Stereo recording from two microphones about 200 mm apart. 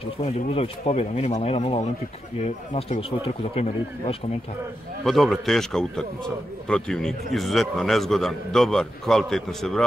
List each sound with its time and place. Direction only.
0.2 s speech: 30° left (ahead or behind)
5.0 s a man's voice: centre (ahead or behind)